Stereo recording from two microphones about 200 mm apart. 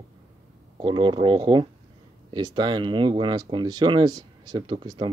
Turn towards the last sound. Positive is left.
turn(degrees=-20)  # may be behind; listen again after turning